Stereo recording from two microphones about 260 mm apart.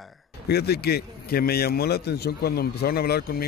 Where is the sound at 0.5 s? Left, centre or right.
Left.